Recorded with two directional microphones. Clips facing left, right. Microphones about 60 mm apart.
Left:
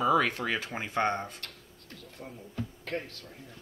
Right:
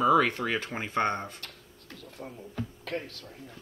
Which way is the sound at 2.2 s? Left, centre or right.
Right.